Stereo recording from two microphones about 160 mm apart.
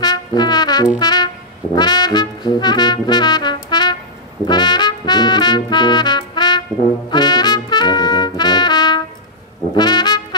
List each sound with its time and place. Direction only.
0.0 s brass instrument: 25° left (ahead or behind)
0.9 s music: 25° left (ahead or behind)
1.8 s brass instrument: 25° left (ahead or behind)
4.5 s trumpet: 25° left (ahead or behind)
9.8 s brass instrument: 25° left (ahead or behind)